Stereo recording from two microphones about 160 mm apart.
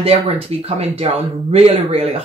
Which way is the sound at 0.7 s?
40° right (ahead or behind).